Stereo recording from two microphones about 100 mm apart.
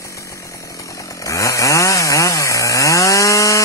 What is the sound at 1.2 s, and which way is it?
Chainsaw, 30° left (ahead or behind).